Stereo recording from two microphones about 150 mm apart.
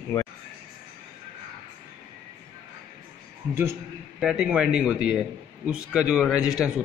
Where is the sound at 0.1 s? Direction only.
15° left (ahead or behind).